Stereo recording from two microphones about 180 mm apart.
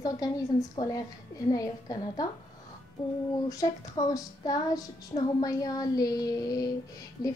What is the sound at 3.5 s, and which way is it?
A woman's voice, 20° left (ahead or behind).